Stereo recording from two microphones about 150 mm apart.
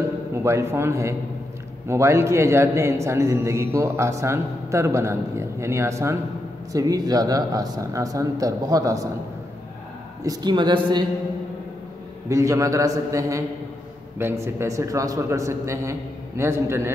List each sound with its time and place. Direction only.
0.4 s a man's voice: 15° right (ahead or behind)
10.2 s a man's voice: 25° right (ahead or behind)
12.3 s a man's voice: 20° right (ahead or behind)